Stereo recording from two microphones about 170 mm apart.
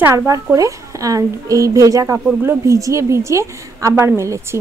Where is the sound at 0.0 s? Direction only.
15° right (ahead or behind).